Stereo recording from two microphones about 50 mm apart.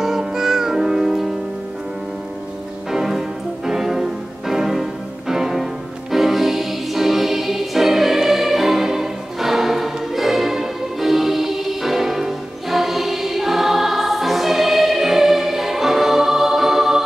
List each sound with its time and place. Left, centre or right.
0.0 s music: centre
2.9 s music: centre